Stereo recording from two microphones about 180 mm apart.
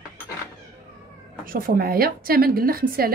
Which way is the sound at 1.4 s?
55° right (ahead or behind).